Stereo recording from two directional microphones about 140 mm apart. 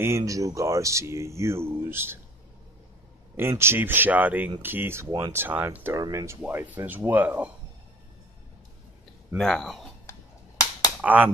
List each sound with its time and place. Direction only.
0.0 s speech: 20° right (ahead or behind)
3.3 s speech: 15° right (ahead or behind)
5.9 s speech: 25° right (ahead or behind)
6.4 s speech: 10° right (ahead or behind)
9.4 s speech: 5° left (ahead or behind)
11.0 s speech: 10° right (ahead or behind)